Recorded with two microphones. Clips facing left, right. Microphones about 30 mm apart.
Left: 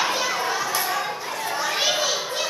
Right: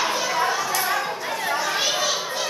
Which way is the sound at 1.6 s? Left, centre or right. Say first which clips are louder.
Left 4 dB; centre.